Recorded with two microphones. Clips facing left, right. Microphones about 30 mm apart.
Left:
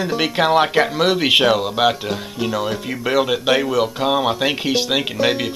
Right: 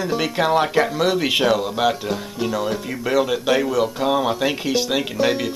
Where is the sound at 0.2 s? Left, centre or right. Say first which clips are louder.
Left 4 dB; left.